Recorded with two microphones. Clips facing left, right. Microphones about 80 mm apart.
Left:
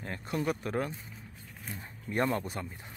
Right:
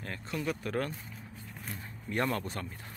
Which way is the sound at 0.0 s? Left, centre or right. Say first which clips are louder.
Left 2 dB; left.